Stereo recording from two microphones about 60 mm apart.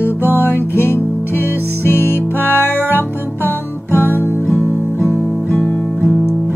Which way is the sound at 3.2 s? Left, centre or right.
Right.